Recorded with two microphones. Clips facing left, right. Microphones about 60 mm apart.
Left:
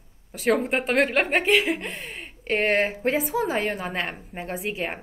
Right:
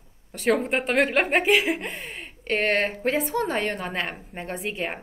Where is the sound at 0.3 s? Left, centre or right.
Centre.